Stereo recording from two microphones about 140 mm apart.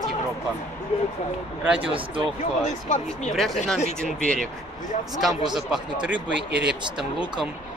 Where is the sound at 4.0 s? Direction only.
5° left (ahead or behind).